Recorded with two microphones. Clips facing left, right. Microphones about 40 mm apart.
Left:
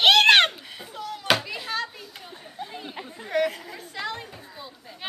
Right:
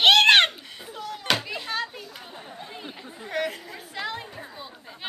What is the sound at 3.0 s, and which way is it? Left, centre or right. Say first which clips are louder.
Chatter: left 4 dB; centre.